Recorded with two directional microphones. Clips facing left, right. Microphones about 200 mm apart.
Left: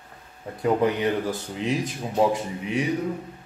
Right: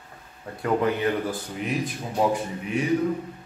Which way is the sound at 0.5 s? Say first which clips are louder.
Left 2 dB; 20° left (ahead or behind).